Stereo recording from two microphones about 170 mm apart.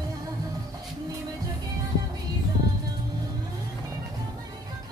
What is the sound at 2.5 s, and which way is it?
Music, 25° right (ahead or behind).